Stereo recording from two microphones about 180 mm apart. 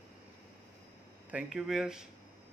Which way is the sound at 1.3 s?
Centre (ahead or behind).